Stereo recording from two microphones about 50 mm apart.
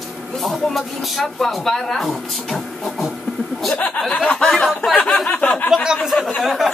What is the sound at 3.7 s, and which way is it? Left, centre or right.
Speech, left.